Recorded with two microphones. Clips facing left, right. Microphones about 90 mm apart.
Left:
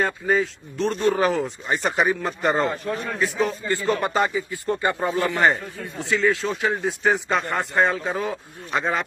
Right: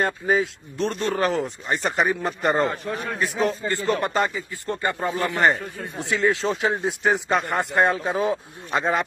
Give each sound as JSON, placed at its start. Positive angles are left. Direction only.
{"t": 0.0, "sound": "a man's voice", "side_deg": -5}
{"t": 0.9, "sound": "a man's voice", "side_deg": 5}
{"t": 4.5, "sound": "speech", "side_deg": 15}
{"t": 5.2, "sound": "a man's voice", "side_deg": 0}
{"t": 5.9, "sound": "a man's voice", "side_deg": -15}
{"t": 7.0, "sound": "a man's voice", "side_deg": 0}
{"t": 7.4, "sound": "a man's voice", "side_deg": -15}